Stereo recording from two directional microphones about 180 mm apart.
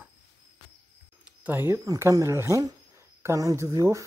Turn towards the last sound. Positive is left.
turn(degrees=-15)  # may be behind; listen again after turning